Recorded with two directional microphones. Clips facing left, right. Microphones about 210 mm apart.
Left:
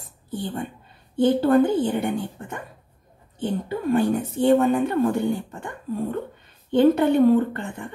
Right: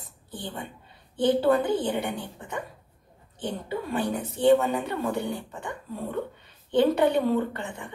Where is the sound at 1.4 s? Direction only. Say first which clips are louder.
Left 5 dB; 45° left (ahead or behind).